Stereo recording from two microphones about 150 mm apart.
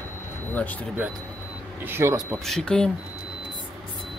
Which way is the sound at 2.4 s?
5° left (ahead or behind).